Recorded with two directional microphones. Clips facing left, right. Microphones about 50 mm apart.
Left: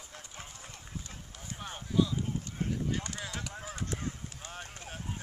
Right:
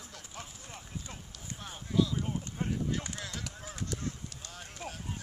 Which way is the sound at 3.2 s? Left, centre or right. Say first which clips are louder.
Left 2 dB; centre.